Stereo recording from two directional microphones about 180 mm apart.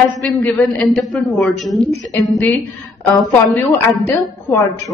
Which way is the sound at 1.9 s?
15° left (ahead or behind).